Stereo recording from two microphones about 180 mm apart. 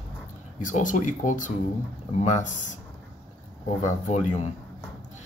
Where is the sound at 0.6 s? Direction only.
45° left (ahead or behind).